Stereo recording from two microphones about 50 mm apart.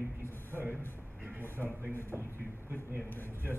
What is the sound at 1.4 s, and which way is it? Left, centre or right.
A man's voice, left.